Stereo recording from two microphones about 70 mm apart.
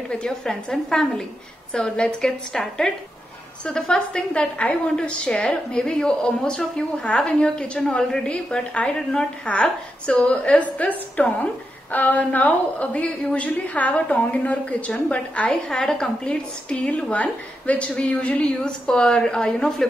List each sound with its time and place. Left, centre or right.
0.1 s a woman's voice: centre